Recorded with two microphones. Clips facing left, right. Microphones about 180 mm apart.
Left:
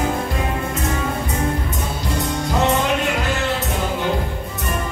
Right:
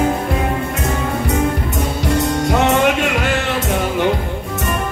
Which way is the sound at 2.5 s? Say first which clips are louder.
Right 3 dB; 70° right (ahead or behind).